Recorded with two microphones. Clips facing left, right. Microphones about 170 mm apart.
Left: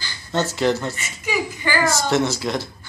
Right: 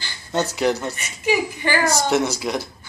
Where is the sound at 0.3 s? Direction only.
10° right (ahead or behind).